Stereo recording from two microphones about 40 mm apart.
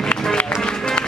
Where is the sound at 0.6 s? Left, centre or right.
Left.